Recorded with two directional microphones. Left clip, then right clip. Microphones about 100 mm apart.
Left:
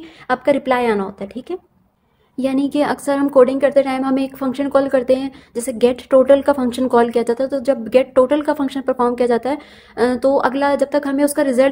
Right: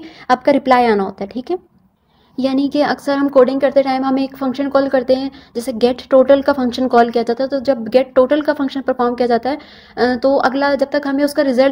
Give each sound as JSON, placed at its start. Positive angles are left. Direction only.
{"t": 0.3, "sound": "a woman's voice", "side_deg": -35}
{"t": 2.3, "sound": "a woman's voice", "side_deg": -15}